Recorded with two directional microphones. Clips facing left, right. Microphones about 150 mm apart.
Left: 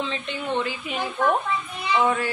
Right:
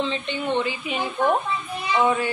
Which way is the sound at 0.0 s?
Centre (ahead or behind).